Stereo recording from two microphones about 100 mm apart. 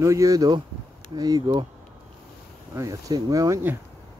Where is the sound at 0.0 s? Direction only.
35° right (ahead or behind).